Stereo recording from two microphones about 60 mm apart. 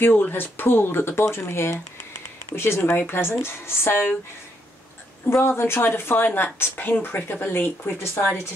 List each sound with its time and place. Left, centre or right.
0.0 s a woman's voice: left
5.2 s a woman's voice: left